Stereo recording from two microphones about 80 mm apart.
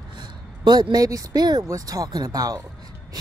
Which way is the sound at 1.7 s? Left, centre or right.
Right.